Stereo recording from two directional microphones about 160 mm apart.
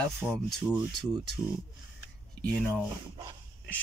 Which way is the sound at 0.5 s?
5° right (ahead or behind).